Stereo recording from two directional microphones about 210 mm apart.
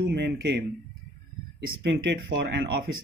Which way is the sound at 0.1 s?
50° right (ahead or behind).